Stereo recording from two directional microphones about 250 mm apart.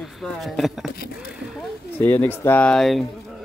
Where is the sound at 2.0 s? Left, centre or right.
Centre.